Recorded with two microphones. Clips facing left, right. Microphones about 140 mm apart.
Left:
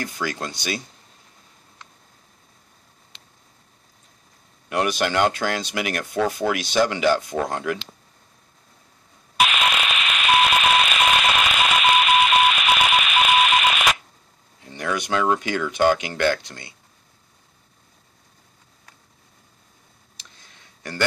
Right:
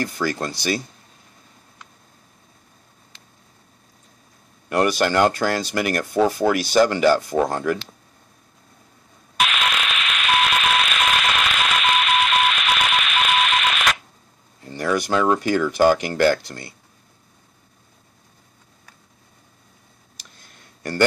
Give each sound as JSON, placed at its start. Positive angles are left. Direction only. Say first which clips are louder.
{"t": 0.2, "sound": "speech", "louder": "right 4 dB", "side_deg": 0}
{"t": 4.6, "sound": "speech", "louder": "right 3 dB", "side_deg": 0}
{"t": 9.4, "sound": "radio", "louder": "left 1 dB", "side_deg": 5}
{"t": 14.8, "sound": "speech", "louder": "right 3 dB", "side_deg": -5}
{"t": 16.4, "sound": "speech", "louder": "right 5 dB", "side_deg": -35}